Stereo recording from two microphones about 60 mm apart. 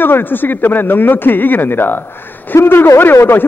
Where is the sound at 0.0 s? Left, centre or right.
Left.